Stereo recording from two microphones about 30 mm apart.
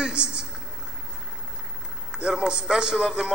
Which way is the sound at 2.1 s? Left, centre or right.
Right.